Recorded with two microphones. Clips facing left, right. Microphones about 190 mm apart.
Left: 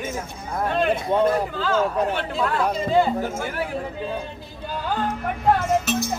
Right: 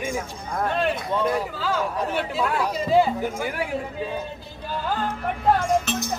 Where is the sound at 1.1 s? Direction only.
55° left (ahead or behind).